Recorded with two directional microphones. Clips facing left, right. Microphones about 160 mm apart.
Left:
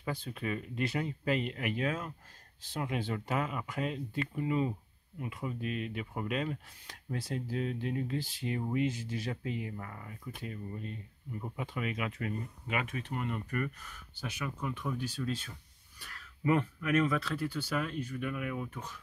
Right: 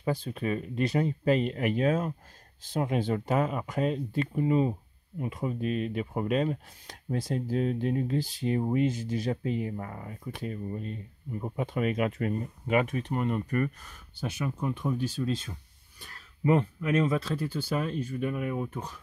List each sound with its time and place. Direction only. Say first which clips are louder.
0.0 s speech: right 7 dB; 35° right (ahead or behind)
17.2 s speech: right 3 dB; 40° right (ahead or behind)